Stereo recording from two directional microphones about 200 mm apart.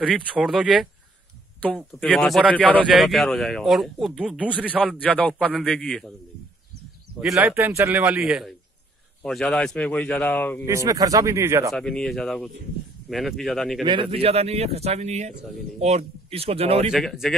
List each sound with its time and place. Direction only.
0.0 s speech: 5° right (ahead or behind)
7.2 s speech: centre (ahead or behind)
7.5 s speech: 10° right (ahead or behind); by 10.6 s 10° left (ahead or behind)
10.6 s speech: 15° right (ahead or behind)
11.7 s speech: 5° left (ahead or behind)
14.1 s speech: 30° right (ahead or behind)
16.9 s speech: centre (ahead or behind)